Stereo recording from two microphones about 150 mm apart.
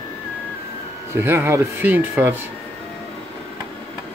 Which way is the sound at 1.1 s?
15° right (ahead or behind).